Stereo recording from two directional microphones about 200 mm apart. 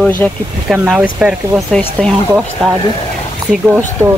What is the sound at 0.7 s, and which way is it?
Speech, 5° right (ahead or behind).